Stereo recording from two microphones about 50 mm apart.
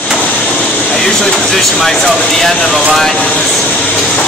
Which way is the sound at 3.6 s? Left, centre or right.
Left.